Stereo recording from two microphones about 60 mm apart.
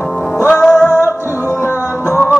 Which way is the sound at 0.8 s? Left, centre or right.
Left.